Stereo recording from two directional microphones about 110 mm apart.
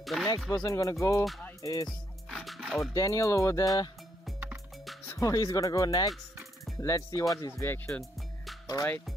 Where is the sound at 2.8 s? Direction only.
30° left (ahead or behind).